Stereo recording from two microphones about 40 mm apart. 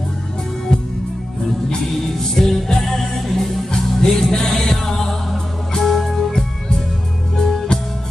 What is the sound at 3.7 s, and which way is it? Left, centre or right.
Music, centre.